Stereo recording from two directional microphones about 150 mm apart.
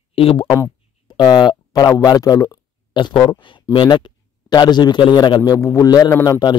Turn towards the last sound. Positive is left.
turn(degrees=25)  # may be behind; listen again after turning